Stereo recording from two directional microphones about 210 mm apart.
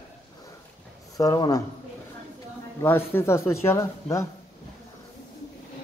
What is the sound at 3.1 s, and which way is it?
A man's voice, 15° left (ahead or behind).